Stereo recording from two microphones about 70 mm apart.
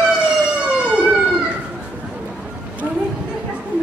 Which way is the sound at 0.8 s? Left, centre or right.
Centre.